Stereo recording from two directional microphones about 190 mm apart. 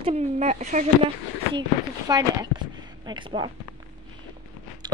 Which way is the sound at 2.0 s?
20° right (ahead or behind).